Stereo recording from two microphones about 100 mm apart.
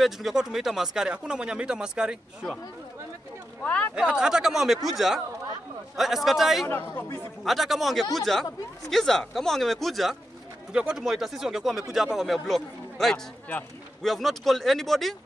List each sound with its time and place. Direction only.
0.0 s speech: 5° right (ahead or behind)
3.6 s speech: 15° left (ahead or behind)
3.9 s a man's voice: 5° right (ahead or behind)
6.7 s a man's voice: 25° left (ahead or behind)
7.4 s a man's voice: centre (ahead or behind)